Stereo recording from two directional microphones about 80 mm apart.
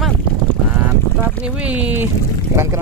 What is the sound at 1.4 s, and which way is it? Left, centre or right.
Speech, centre.